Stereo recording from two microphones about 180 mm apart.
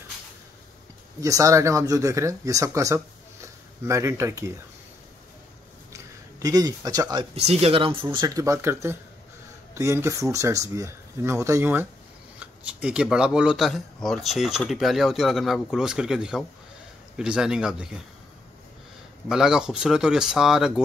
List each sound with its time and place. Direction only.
1.2 s speech: 15° right (ahead or behind)
5.9 s speech: 20° right (ahead or behind)
7.3 s speech: 35° right (ahead or behind); by 18.0 s 5° right (ahead or behind)
19.2 s speech: 5° right (ahead or behind)